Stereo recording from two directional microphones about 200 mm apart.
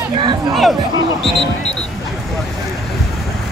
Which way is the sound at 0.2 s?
20° right (ahead or behind).